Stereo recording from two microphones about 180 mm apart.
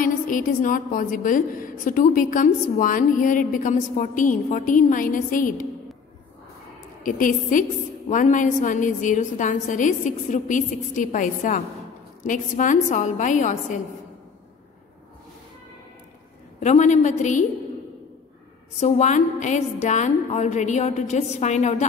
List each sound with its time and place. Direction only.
0.0 s a woman's voice: 50° left (ahead or behind)
7.0 s a woman's voice: 50° left (ahead or behind)
16.5 s a woman's voice: 40° left (ahead or behind)
18.8 s a woman's voice: 40° left (ahead or behind)